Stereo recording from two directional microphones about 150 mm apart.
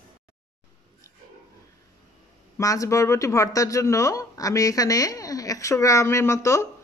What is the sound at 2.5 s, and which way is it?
Speech, 20° left (ahead or behind).